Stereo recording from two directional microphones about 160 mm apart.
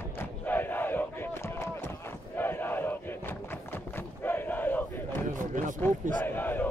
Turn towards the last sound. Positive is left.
turn(degrees=10)  # may be behind; listen again after turning